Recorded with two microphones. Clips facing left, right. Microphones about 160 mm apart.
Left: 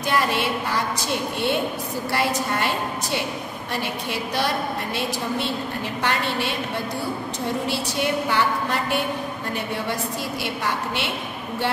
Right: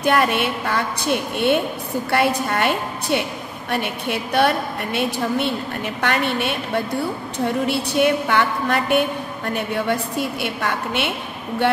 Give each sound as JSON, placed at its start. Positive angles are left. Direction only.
{"t": 0.0, "sound": "a woman's voice", "side_deg": -55}
{"t": 5.9, "sound": "a woman's voice", "side_deg": -55}
{"t": 10.4, "sound": "a woman's voice", "side_deg": -55}